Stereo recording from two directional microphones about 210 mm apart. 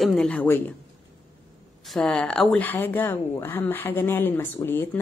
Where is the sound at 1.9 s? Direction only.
5° left (ahead or behind).